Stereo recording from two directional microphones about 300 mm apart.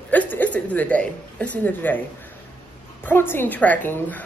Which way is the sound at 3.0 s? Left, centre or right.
Centre.